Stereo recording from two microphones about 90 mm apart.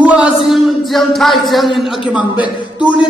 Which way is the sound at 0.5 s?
Centre (ahead or behind).